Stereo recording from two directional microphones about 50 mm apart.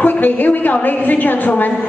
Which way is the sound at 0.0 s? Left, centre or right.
Left.